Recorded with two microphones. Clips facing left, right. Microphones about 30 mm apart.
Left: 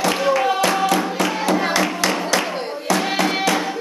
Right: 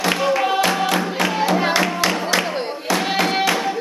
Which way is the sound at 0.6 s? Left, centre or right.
Centre.